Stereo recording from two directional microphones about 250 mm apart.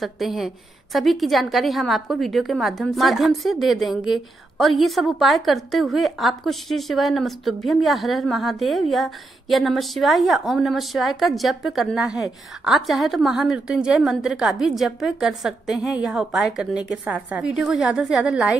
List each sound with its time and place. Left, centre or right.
0.0 s a woman's voice: centre